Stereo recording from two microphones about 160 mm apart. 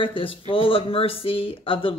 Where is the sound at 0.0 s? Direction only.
35° left (ahead or behind).